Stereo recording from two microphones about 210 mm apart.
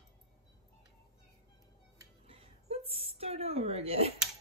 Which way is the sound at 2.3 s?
25° right (ahead or behind).